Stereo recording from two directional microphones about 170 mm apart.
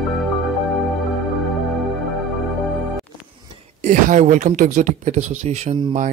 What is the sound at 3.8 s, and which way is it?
Speech, 45° right (ahead or behind).